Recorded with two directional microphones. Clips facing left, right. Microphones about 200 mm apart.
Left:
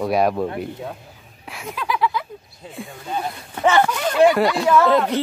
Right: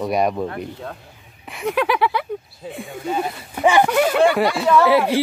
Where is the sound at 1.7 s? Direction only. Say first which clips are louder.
Right 4 dB; 70° right (ahead or behind).